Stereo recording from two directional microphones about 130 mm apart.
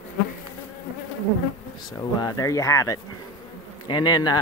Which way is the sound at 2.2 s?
25° left (ahead or behind).